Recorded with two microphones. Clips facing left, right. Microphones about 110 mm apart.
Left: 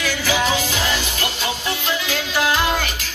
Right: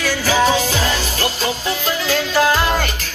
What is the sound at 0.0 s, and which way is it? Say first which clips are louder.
Music: right 4 dB; 40° right (ahead or behind).